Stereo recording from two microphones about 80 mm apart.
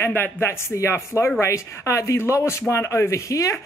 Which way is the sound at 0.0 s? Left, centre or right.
Left.